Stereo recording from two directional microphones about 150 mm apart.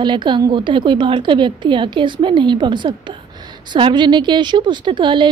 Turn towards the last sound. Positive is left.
turn(degrees=-30)  # may be behind; listen again after turning